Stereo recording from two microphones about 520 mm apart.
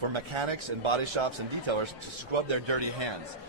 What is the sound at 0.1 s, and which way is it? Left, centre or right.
A man's voice, right.